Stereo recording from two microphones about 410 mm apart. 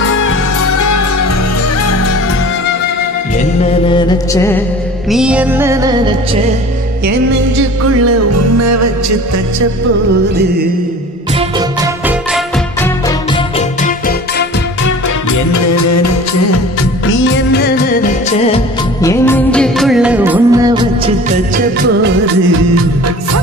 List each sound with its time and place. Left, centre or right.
0.2 s music: left
3.6 s music: centre
7.9 s music: right
15.5 s music: left
19.0 s music: centre